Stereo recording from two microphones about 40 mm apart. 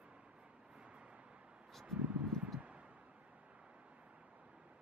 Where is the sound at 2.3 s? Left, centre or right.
Centre.